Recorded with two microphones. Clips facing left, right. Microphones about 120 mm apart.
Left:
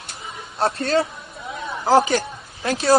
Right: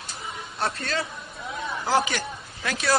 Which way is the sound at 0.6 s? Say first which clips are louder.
Left 9 dB; 30° left (ahead or behind).